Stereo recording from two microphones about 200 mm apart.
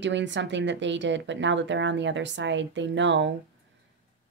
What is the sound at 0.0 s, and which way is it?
Speech, 65° right (ahead or behind).